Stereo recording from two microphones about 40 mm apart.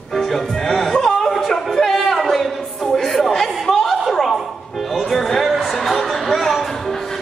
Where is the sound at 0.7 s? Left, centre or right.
Centre.